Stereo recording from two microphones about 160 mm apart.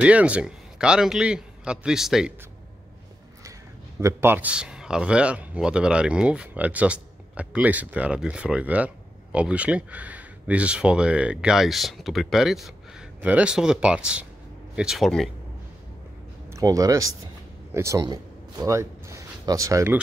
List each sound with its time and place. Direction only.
0.0 s a man's voice: 10° right (ahead or behind)
4.0 s a man's voice: 15° right (ahead or behind); by 15.2 s centre (ahead or behind)
16.4 s a man's voice: 20° right (ahead or behind)